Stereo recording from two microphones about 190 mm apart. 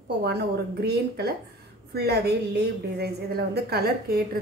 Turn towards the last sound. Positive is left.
turn(degrees=-55)  # may be behind; listen again after turning